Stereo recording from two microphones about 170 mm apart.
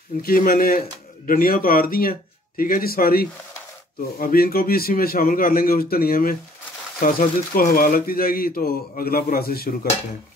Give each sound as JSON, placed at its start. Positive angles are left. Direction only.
{"t": 0.2, "sound": "speech", "side_deg": 55}